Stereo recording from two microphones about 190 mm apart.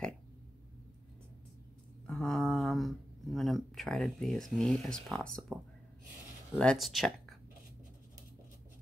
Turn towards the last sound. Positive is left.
turn(degrees=0)  # may be behind; listen again after turning